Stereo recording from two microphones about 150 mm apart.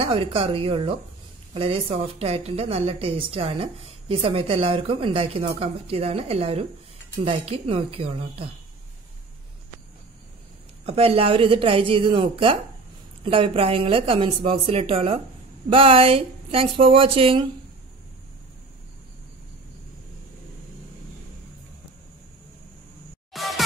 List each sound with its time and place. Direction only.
0.0 s a woman's voice: 40° right (ahead or behind)
10.9 s a woman's voice: 40° right (ahead or behind)
23.3 s music: centre (ahead or behind)